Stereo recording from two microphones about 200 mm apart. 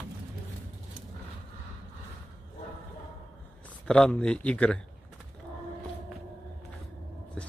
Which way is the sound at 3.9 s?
5° left (ahead or behind).